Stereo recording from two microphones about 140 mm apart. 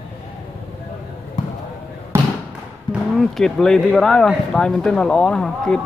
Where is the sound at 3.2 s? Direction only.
Centre (ahead or behind).